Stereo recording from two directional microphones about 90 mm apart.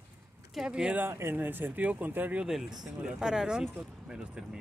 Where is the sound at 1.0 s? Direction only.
25° right (ahead or behind).